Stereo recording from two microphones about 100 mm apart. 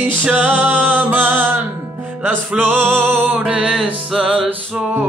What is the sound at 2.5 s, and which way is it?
Music, 15° right (ahead or behind).